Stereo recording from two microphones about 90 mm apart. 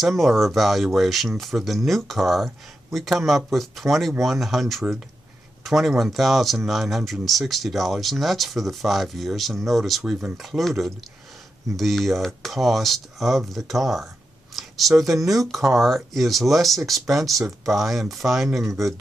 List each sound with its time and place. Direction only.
0.0 s speech: centre (ahead or behind)